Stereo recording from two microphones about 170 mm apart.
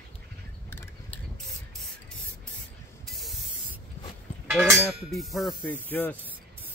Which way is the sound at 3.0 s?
Centre (ahead or behind).